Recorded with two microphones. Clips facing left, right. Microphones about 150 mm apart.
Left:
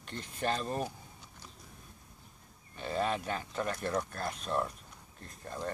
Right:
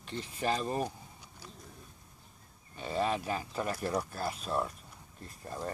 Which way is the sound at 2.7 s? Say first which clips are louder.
Right 1 dB; centre (ahead or behind).